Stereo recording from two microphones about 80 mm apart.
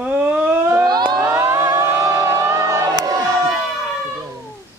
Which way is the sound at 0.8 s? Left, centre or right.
Right.